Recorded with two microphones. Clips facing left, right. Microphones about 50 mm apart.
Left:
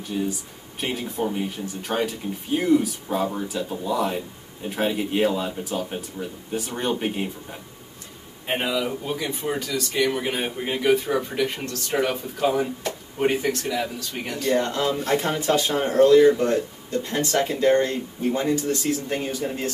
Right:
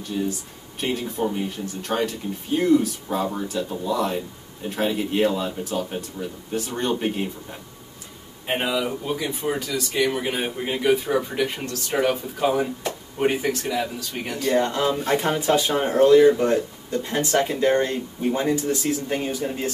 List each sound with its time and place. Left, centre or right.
0.3 s speech: centre
8.5 s speech: centre
14.5 s speech: centre
19.0 s speech: centre